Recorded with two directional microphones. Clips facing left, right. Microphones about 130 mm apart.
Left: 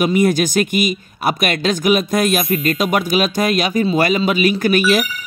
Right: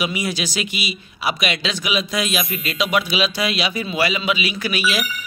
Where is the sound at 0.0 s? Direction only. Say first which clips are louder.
Left 9 dB; 50° left (ahead or behind).